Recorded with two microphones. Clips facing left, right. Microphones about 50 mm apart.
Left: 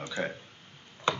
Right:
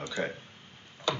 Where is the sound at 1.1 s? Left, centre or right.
Left.